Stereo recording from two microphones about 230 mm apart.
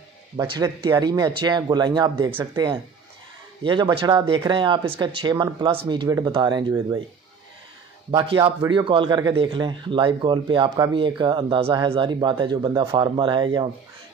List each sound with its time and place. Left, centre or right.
0.4 s a man's voice: centre
8.1 s a man's voice: right